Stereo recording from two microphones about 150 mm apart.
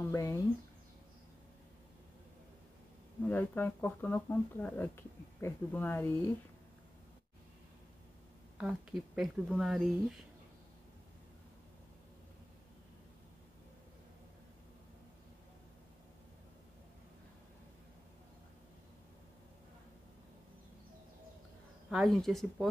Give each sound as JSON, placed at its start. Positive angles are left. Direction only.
{"t": 0.1, "sound": "speech", "side_deg": 20}
{"t": 3.3, "sound": "speech", "side_deg": 15}
{"t": 8.5, "sound": "speech", "side_deg": -5}
{"t": 21.8, "sound": "speech", "side_deg": 0}